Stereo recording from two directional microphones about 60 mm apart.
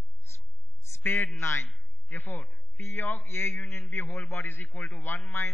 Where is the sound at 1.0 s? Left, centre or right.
Left.